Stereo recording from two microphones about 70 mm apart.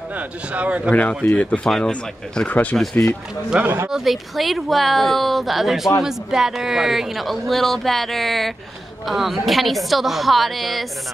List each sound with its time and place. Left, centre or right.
0.1 s a man's voice: centre
0.9 s speech: left
2.7 s speech: centre
3.5 s speech: centre
3.9 s speech: centre